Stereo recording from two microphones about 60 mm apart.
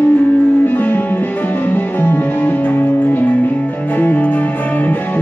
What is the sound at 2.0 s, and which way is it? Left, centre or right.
Music, left.